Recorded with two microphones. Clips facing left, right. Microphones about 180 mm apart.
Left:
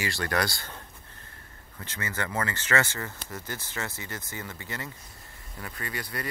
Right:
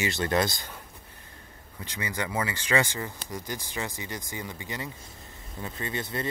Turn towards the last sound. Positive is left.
turn(degrees=-25)  # may be behind; listen again after turning